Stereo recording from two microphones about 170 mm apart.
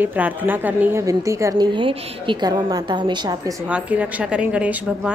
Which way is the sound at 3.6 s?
10° right (ahead or behind).